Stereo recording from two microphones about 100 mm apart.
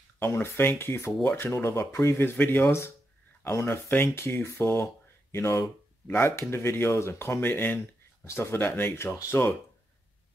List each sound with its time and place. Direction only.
0.2 s speech: 20° left (ahead or behind)